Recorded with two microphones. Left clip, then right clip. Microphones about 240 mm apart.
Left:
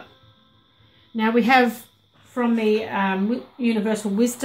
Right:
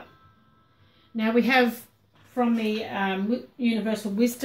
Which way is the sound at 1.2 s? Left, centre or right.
Left.